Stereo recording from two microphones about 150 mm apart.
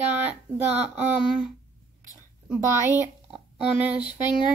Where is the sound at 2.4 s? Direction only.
10° right (ahead or behind).